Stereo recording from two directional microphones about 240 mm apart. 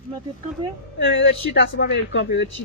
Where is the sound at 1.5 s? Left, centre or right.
Left.